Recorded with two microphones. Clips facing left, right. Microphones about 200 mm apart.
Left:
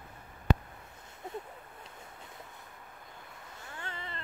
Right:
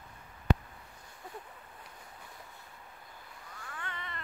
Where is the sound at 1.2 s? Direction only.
25° left (ahead or behind).